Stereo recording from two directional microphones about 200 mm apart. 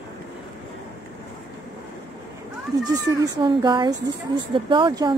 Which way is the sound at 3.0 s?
20° right (ahead or behind).